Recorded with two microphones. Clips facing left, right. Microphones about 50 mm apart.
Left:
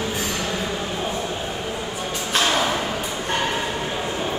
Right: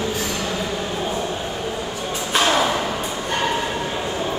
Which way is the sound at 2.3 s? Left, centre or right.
Right.